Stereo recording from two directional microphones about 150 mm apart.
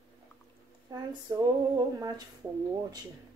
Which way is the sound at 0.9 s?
25° right (ahead or behind).